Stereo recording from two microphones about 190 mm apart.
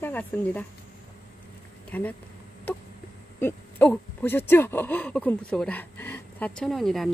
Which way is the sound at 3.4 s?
10° left (ahead or behind).